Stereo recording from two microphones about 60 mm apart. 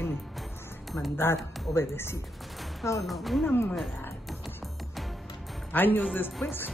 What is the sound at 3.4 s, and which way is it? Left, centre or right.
Speech, left.